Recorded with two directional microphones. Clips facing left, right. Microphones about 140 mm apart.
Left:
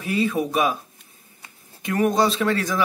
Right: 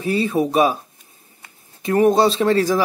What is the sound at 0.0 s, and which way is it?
Speech, 30° right (ahead or behind).